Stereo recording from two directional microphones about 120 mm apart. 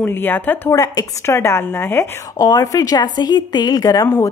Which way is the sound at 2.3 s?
30° left (ahead or behind).